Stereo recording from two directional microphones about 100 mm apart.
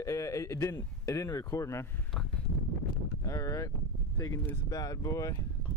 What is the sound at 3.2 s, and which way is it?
Speech, 35° left (ahead or behind).